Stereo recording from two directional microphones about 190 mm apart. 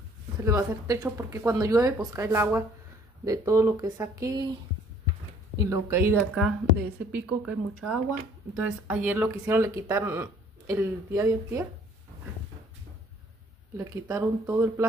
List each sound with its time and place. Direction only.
0.4 s speech: 15° right (ahead or behind)
5.7 s speech: 15° right (ahead or behind)
6.1 s a woman's voice: centre (ahead or behind)
8.5 s speech: 5° right (ahead or behind)
13.7 s speech: 15° right (ahead or behind)